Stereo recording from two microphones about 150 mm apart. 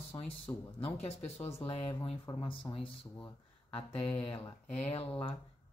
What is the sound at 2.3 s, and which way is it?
Speech, 25° left (ahead or behind).